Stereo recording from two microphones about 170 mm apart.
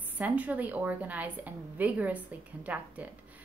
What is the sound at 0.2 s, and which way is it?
A woman's voice, 10° right (ahead or behind).